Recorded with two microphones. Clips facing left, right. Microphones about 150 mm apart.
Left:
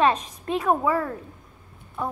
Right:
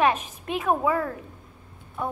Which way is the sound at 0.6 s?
5° right (ahead or behind).